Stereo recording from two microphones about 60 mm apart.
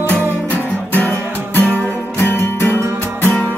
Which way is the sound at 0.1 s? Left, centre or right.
Left.